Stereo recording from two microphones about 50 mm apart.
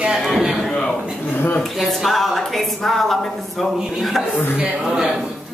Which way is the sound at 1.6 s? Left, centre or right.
Centre.